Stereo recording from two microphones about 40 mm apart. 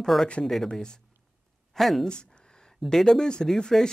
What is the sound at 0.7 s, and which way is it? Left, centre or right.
Speech, centre.